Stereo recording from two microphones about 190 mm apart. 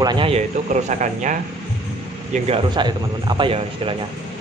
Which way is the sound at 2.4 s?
25° right (ahead or behind).